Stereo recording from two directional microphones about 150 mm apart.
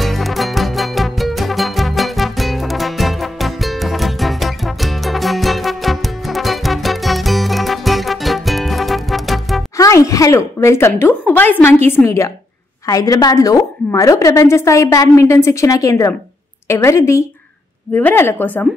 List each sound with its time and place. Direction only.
0.0 s music: centre (ahead or behind)
9.8 s a woman's voice: 20° left (ahead or behind)